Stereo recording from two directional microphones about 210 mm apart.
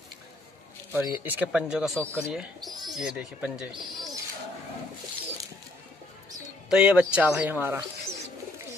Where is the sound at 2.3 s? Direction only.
Centre (ahead or behind).